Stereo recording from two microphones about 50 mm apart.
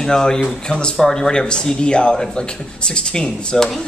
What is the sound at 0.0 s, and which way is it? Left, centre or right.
A woman's voice, centre.